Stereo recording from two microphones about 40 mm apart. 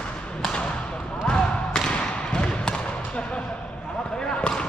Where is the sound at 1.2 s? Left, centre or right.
Left.